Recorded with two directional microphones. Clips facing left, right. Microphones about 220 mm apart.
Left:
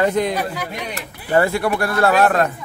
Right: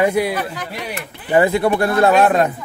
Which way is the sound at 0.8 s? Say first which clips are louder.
Right 1 dB; 15° right (ahead or behind).